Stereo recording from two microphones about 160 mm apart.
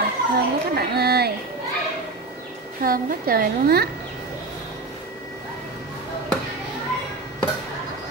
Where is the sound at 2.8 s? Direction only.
65° right (ahead or behind).